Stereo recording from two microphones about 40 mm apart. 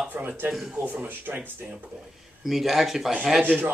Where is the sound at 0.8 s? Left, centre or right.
Right.